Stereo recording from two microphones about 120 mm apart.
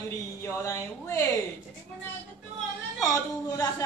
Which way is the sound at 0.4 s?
20° left (ahead or behind).